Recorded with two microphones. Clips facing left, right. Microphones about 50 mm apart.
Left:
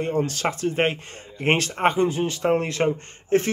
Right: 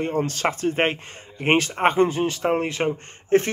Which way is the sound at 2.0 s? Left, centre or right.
Right.